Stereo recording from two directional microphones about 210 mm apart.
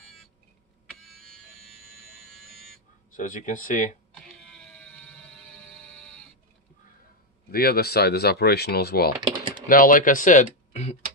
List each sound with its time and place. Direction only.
0.8 s music: centre (ahead or behind)
3.1 s speech: 40° left (ahead or behind)
4.1 s a sound: 5° left (ahead or behind)
7.5 s speech: 45° left (ahead or behind)
9.4 s typing: 20° right (ahead or behind)
9.7 s speech: 40° left (ahead or behind)